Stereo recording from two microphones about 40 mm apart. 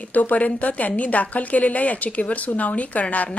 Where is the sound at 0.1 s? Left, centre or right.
Left.